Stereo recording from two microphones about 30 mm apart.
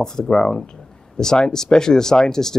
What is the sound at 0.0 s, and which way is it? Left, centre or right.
Speech, centre.